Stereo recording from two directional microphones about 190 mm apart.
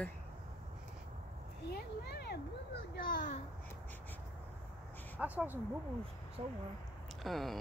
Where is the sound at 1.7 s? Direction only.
60° left (ahead or behind).